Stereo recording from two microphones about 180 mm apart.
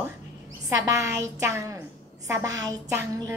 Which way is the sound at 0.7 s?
20° right (ahead or behind).